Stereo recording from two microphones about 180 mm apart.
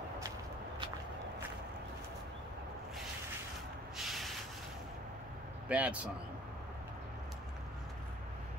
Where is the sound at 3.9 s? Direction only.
Centre (ahead or behind).